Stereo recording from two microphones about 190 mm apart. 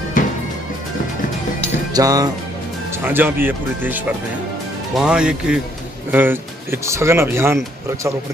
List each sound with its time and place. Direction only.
2.0 s music: 20° right (ahead or behind)
3.0 s speech: 10° right (ahead or behind)